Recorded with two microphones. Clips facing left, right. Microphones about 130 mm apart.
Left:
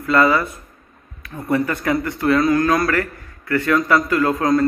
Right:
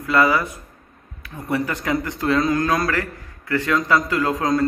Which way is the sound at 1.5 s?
20° right (ahead or behind).